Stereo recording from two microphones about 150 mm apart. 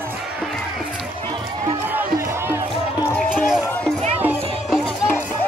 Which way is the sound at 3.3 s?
Centre (ahead or behind).